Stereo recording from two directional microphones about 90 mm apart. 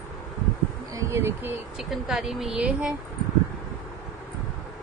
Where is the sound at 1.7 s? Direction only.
Centre (ahead or behind).